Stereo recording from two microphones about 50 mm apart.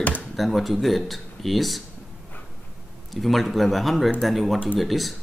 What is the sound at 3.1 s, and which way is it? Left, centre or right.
Speech, centre.